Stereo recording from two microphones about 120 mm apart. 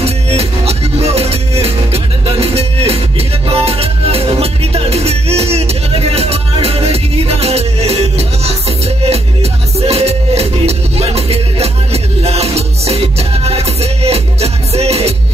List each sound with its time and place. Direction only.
0.0 s music: 60° right (ahead or behind)